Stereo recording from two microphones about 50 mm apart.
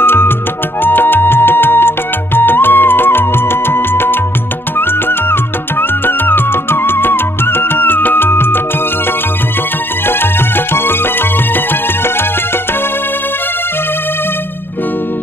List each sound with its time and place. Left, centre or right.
0.0 s music: left
5.3 s music: left
10.0 s music: left